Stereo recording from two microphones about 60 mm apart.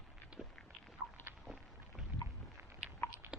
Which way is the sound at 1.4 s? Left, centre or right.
Centre.